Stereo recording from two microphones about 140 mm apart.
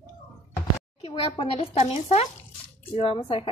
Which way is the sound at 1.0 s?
40° left (ahead or behind).